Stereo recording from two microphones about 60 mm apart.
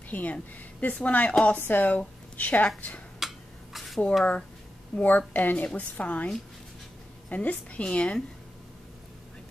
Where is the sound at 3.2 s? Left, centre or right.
Centre.